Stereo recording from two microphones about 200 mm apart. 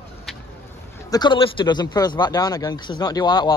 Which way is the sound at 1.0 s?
20° left (ahead or behind).